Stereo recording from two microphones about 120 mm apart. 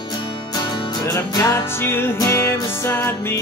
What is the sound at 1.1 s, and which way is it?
Music, 25° left (ahead or behind).